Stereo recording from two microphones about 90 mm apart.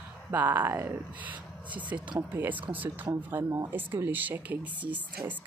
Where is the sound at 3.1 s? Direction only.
40° right (ahead or behind).